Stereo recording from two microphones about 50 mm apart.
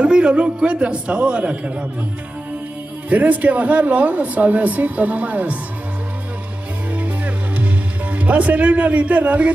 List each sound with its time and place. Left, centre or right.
0.0 s speech: right
3.1 s speech: right
6.9 s music: right